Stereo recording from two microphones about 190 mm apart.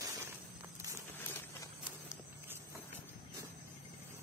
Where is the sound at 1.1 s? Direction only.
10° left (ahead or behind).